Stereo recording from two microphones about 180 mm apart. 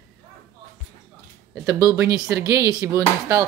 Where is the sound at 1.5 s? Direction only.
15° right (ahead or behind).